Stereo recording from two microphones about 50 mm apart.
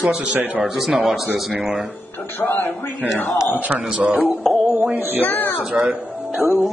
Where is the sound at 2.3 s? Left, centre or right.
Left.